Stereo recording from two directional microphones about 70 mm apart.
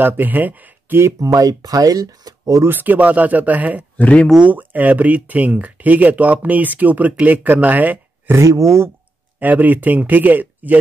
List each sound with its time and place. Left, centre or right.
0.0 s speech: right
1.2 s speech: right
2.6 s speech: right
4.0 s speech: centre
4.4 s speech: right
8.4 s speech: right
9.4 s speech: right